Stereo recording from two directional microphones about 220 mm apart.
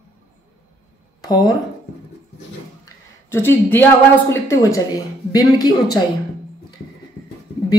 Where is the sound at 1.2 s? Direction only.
20° left (ahead or behind).